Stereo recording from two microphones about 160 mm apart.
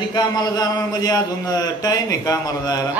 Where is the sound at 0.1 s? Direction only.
25° left (ahead or behind).